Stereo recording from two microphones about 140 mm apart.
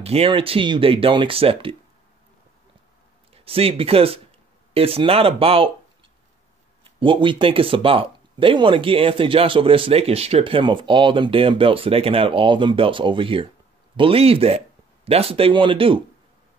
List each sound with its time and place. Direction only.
0.0 s speech: 45° right (ahead or behind)
3.3 s speech: 45° right (ahead or behind)
6.8 s speech: 40° right (ahead or behind)